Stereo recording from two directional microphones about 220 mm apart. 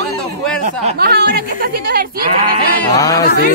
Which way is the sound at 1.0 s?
45° right (ahead or behind).